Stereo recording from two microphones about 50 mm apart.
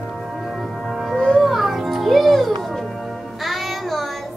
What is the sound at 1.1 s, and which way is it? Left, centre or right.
Music, centre.